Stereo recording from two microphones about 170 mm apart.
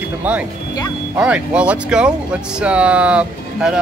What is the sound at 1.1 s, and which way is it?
Speech, 5° right (ahead or behind).